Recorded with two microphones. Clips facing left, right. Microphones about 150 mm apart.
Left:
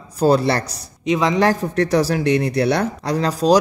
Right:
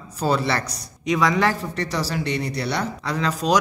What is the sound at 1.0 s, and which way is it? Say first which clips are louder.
Speech: left 3 dB; 25° left (ahead or behind).